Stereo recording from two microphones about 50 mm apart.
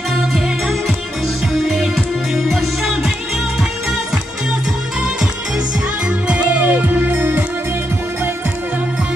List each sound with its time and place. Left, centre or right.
2.3 s music: centre
6.6 s music: right